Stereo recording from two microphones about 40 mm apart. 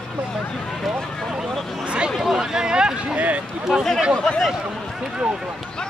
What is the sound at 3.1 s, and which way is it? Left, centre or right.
Speech, right.